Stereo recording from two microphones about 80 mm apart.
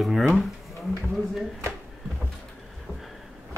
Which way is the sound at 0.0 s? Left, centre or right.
Centre.